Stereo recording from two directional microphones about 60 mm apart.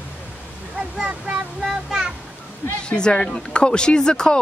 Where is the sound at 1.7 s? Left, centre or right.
Centre.